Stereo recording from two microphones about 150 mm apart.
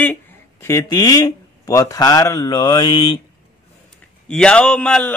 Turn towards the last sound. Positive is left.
turn(degrees=5)  # may be behind; listen again after turning